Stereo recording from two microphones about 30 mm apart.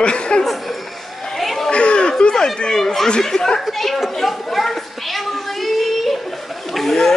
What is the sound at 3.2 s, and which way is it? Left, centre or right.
Speech, centre.